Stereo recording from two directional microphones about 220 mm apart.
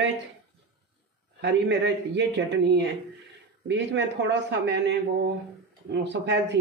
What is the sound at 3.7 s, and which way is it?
A man's voice, 50° right (ahead or behind).